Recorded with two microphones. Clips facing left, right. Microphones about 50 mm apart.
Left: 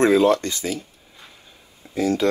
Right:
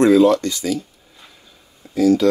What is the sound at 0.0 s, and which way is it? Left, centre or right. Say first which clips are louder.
Speech: right 4 dB; left.